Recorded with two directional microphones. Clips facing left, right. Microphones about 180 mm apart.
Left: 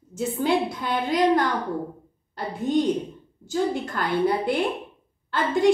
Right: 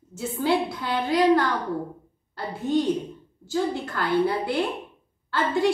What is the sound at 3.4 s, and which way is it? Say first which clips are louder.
Speech: left 1 dB; 20° left (ahead or behind).